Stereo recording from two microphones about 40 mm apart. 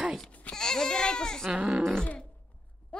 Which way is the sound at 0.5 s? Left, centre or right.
Centre.